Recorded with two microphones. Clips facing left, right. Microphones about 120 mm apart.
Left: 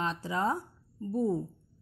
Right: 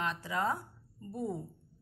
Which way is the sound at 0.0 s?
30° left (ahead or behind).